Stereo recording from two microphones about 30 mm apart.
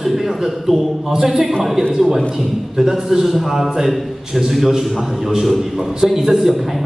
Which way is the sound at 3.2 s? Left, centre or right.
Centre.